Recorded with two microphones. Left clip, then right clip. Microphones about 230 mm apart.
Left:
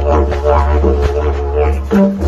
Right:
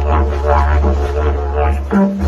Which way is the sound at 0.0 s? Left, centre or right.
Left.